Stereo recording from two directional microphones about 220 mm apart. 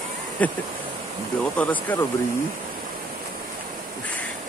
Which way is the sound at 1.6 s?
5° left (ahead or behind).